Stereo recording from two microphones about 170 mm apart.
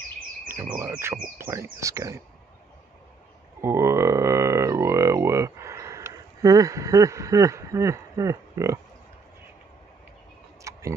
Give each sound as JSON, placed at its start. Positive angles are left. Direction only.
{"t": 0.5, "sound": "speech", "side_deg": -15}
{"t": 3.6, "sound": "a sound", "side_deg": -15}
{"t": 10.7, "sound": "tick-tock", "side_deg": -20}